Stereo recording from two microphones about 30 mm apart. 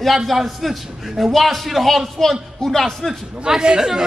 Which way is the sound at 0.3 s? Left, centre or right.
Centre.